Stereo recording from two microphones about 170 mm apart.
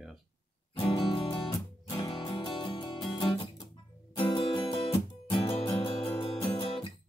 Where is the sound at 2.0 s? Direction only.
30° left (ahead or behind).